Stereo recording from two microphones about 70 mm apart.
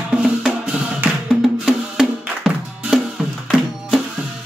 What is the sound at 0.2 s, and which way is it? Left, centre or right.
Music, centre.